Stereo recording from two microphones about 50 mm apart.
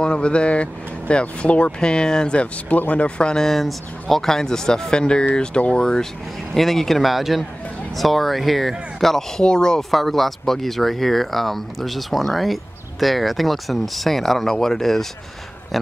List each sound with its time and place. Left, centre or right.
0.0 s speech: centre
3.4 s speech: centre
9.4 s speech: centre
9.8 s speech: centre